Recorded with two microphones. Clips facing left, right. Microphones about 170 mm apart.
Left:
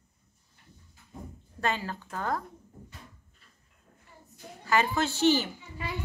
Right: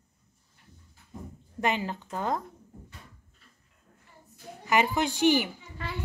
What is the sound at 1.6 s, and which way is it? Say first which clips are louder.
Speech: right 2 dB; 20° right (ahead or behind).